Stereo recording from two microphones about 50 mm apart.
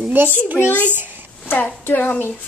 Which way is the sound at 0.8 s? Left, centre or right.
Right.